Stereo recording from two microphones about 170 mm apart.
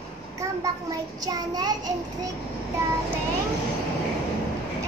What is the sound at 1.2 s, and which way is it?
Child singing, 20° right (ahead or behind).